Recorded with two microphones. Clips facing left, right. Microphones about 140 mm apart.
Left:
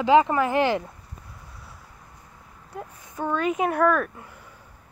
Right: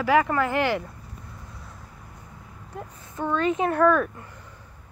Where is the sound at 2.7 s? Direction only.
10° left (ahead or behind).